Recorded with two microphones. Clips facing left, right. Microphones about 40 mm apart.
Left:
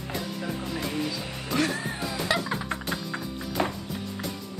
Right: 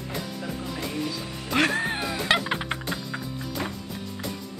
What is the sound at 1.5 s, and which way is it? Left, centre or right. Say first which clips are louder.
Music: right 4 dB; right.